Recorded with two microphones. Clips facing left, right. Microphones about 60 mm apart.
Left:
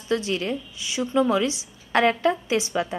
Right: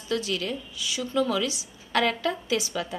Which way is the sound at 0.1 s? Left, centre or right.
Left.